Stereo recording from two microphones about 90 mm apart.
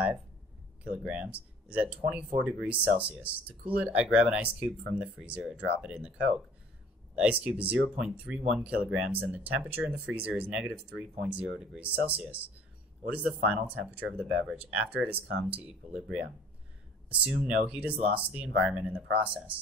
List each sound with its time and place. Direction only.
0.8 s speech: 15° right (ahead or behind)